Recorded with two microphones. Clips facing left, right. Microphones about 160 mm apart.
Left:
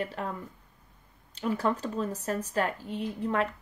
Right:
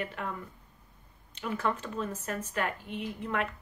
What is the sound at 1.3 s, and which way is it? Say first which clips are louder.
Speech: left 4 dB; 35° left (ahead or behind).